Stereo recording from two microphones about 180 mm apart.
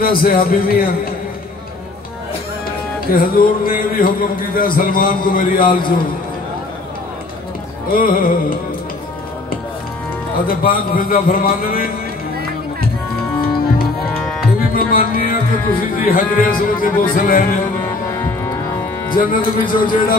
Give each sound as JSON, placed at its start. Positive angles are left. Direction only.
{"t": 0.0, "sound": "a man's voice", "side_deg": 55}
{"t": 3.1, "sound": "speech", "side_deg": 55}
{"t": 7.9, "sound": "speech", "side_deg": 50}
{"t": 10.4, "sound": "speech", "side_deg": 55}
{"t": 14.1, "sound": "tabla", "side_deg": 5}
{"t": 14.7, "sound": "speech", "side_deg": 55}
{"t": 19.0, "sound": "speech", "side_deg": 50}